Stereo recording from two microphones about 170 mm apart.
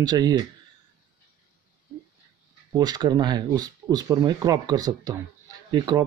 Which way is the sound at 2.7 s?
25° right (ahead or behind).